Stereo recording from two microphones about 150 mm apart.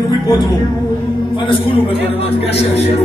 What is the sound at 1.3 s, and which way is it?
A man's voice, 35° left (ahead or behind).